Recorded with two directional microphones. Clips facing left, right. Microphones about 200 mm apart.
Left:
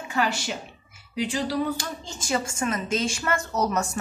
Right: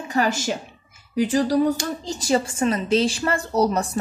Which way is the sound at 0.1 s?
45° right (ahead or behind).